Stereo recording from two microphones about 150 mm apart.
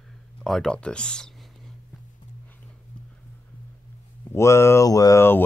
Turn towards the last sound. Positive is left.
turn(degrees=20)  # may be behind; listen again after turning